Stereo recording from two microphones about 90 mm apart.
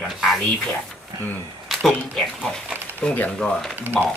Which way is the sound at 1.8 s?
5° left (ahead or behind).